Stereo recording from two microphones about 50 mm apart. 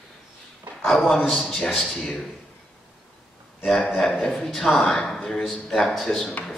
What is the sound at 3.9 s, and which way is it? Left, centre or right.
A man's voice, centre.